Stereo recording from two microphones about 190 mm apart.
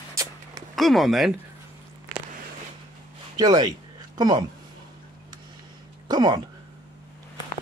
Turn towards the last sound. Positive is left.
turn(degrees=-20)  # may be behind; listen again after turning